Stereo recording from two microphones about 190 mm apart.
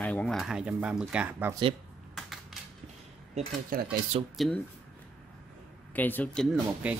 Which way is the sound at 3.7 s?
50° right (ahead or behind).